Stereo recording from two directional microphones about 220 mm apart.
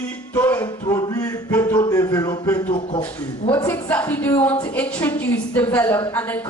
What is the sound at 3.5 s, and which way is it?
Speech, 10° left (ahead or behind).